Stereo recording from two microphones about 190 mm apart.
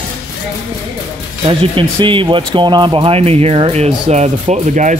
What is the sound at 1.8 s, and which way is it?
Speech, 25° right (ahead or behind).